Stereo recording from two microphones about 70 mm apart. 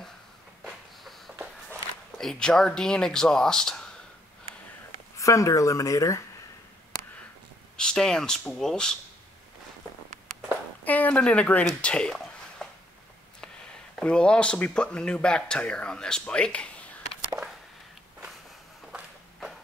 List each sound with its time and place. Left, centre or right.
0.7 s a sound: centre
1.7 s speech: centre
5.1 s speech: left
7.7 s speech: centre
10.8 s speech: left
13.9 s speech: centre